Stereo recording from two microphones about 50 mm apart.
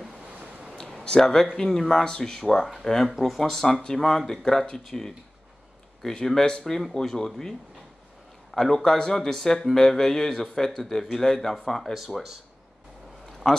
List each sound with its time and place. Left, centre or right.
0.3 s a sound: right
1.0 s speech: centre
13.4 s speech: centre